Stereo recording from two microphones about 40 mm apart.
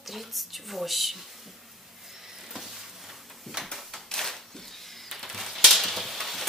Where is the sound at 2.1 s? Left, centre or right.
Centre.